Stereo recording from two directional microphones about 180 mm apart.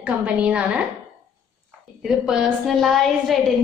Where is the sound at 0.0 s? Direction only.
5° right (ahead or behind).